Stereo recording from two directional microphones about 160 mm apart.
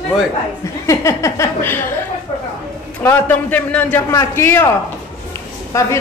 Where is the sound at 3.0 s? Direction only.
10° left (ahead or behind).